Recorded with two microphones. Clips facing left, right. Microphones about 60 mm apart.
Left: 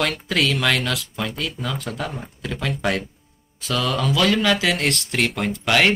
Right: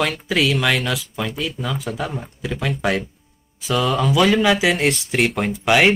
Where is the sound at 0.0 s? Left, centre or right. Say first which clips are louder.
Right 2 dB; centre.